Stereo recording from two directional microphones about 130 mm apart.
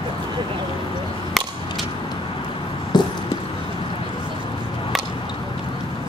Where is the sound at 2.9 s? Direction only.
35° left (ahead or behind).